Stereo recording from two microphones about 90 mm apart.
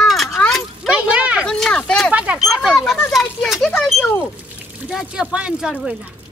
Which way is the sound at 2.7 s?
5° left (ahead or behind).